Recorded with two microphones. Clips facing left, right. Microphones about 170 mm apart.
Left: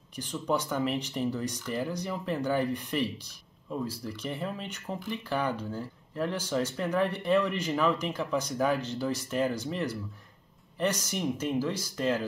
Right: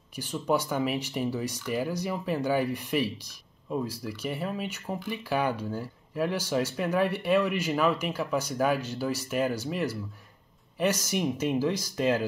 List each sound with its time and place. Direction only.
0.1 s speech: 10° right (ahead or behind)